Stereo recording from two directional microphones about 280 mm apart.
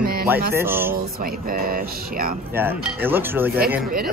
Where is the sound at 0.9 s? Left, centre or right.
Right.